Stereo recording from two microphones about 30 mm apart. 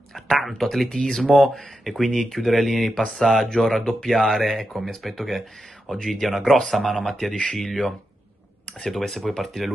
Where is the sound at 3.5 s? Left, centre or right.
Centre.